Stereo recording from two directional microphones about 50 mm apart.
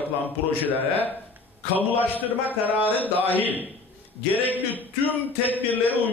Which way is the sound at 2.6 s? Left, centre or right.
Right.